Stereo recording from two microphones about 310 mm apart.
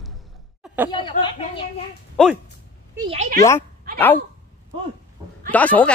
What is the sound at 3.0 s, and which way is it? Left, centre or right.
Speech, right.